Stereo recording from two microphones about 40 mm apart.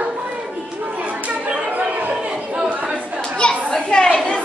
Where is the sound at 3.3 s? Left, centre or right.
Centre.